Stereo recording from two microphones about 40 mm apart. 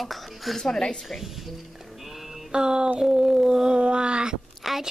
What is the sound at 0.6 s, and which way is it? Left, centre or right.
Speech, centre.